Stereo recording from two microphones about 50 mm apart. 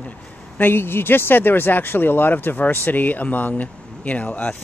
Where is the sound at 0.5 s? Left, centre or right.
Left.